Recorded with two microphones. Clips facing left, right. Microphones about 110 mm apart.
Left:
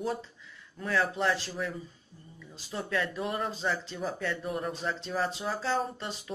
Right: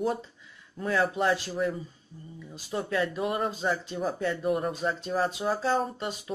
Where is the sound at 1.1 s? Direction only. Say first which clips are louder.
Right 3 dB; 15° right (ahead or behind).